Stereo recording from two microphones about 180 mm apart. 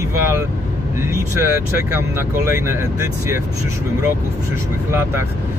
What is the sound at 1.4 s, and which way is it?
Speech, 10° right (ahead or behind).